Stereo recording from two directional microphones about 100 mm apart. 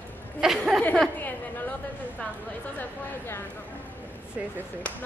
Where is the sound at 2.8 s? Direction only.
25° left (ahead or behind).